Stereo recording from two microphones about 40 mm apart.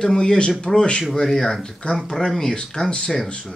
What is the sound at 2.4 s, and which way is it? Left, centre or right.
Speech, centre.